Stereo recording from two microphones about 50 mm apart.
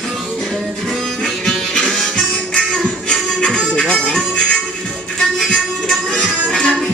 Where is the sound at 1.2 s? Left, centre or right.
Centre.